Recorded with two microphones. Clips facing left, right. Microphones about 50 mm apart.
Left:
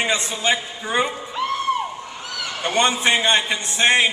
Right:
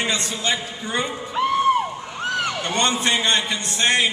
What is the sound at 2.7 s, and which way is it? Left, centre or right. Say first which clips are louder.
A man's voice: left 5 dB; centre.